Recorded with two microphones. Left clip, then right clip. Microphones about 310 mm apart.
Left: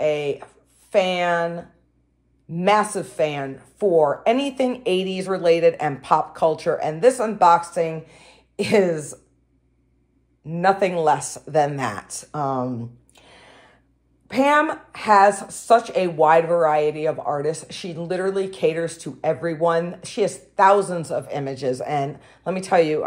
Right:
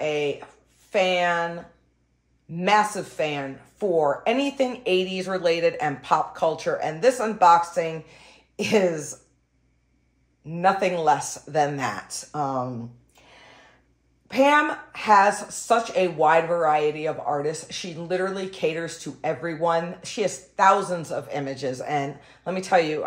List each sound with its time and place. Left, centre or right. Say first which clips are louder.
0.0 s a sound: left 3 dB; left
0.8 s a woman's voice: left 2 dB; left
2.5 s a woman's voice: left 2 dB; left
10.5 s a woman's voice: left 2 dB; left